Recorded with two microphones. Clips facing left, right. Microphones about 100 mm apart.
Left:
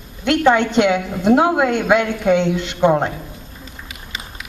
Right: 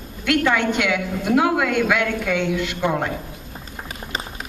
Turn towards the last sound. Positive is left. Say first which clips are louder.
# left 6 dB
turn(degrees=25)  # may be behind; listen again after turning